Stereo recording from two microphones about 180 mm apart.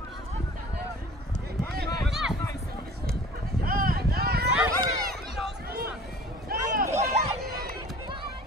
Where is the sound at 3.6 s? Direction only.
55° right (ahead or behind).